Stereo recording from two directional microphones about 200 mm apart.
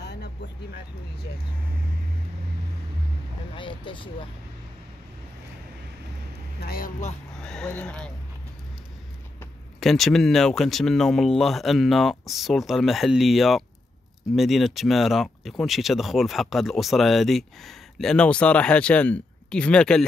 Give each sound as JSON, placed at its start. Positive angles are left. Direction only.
{"t": 3.5, "sound": "speech", "side_deg": 25}
{"t": 6.6, "sound": "speech", "side_deg": 45}
{"t": 7.3, "sound": "speech", "side_deg": 5}
{"t": 9.8, "sound": "speech", "side_deg": 0}